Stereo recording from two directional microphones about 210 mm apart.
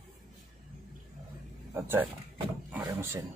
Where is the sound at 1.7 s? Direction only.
10° right (ahead or behind).